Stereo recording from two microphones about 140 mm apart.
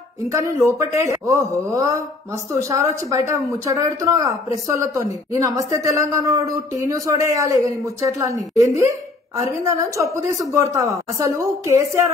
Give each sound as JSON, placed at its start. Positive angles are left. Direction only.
{"t": 0.3, "sound": "speech", "side_deg": -25}